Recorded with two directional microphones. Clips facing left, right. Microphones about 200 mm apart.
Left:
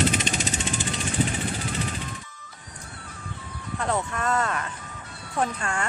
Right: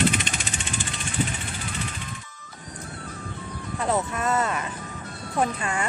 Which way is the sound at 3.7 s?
5° right (ahead or behind).